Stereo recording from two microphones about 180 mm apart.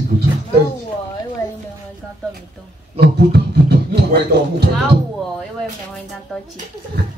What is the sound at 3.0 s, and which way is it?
Music, 65° right (ahead or behind).